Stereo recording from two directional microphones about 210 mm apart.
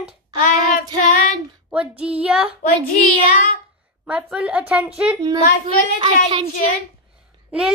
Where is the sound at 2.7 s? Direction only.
45° left (ahead or behind).